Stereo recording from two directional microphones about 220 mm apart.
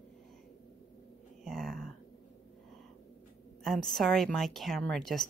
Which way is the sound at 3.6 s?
Centre (ahead or behind).